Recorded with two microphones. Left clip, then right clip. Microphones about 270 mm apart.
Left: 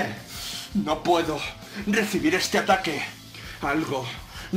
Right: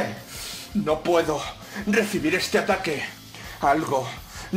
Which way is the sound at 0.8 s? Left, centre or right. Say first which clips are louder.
Right 1 dB; centre.